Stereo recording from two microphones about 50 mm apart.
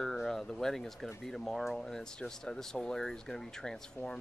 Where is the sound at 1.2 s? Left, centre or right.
Centre.